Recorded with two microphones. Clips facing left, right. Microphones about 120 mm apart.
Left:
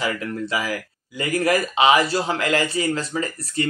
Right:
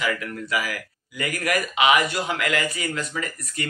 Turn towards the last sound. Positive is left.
turn(degrees=30)  # may be behind; listen again after turning